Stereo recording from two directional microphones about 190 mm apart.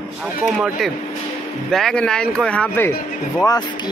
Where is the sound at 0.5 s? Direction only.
Centre (ahead or behind).